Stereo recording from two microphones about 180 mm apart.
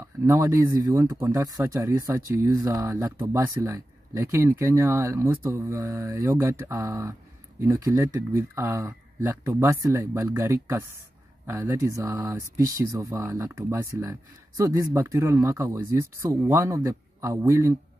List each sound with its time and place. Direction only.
0.3 s speech: 15° right (ahead or behind)